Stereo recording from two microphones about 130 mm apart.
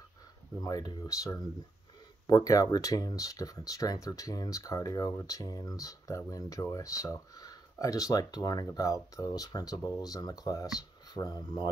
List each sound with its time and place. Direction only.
0.6 s speech: 30° left (ahead or behind)